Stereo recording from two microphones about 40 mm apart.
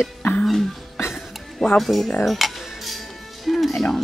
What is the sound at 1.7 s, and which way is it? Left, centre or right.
Speech, centre.